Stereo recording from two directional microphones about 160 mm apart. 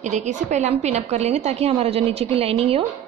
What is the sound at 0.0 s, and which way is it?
A woman's voice, 45° right (ahead or behind).